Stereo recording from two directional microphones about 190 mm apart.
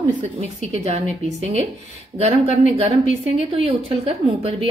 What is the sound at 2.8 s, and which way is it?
A woman's voice, 30° right (ahead or behind).